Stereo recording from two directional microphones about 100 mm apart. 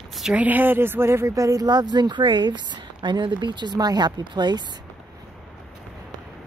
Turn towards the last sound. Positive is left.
turn(degrees=-45)  # may be behind; listen again after turning